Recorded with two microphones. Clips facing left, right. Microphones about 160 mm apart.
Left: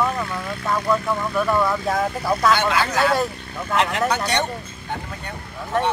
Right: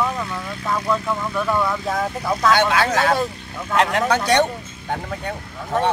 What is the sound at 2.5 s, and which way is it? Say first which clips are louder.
Speech: right 2 dB; 55° right (ahead or behind).